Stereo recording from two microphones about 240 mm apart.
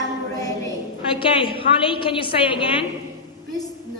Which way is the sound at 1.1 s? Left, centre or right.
Left.